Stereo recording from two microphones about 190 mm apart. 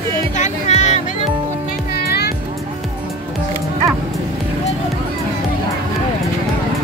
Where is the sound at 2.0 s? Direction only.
55° left (ahead or behind).